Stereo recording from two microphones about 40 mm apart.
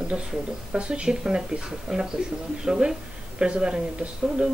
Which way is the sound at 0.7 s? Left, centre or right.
Right.